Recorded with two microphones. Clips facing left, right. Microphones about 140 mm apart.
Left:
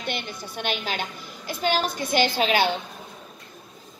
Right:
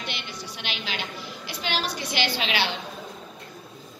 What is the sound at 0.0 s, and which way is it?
A child's voice, 50° left (ahead or behind).